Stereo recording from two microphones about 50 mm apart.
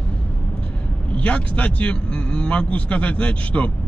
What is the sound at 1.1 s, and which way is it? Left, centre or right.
Speech, left.